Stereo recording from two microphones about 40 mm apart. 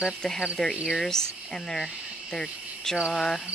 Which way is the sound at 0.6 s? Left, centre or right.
Centre.